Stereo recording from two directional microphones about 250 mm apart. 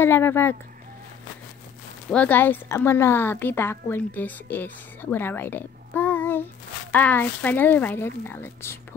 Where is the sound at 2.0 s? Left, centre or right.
Centre.